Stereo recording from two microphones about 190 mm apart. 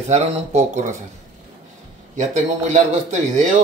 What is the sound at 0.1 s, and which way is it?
Speech, 35° right (ahead or behind).